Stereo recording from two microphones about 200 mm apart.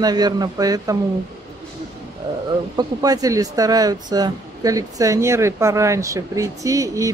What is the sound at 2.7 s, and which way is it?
Speech, 20° right (ahead or behind).